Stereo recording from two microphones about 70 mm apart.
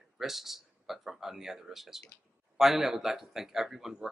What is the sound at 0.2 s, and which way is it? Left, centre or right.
Speech, centre.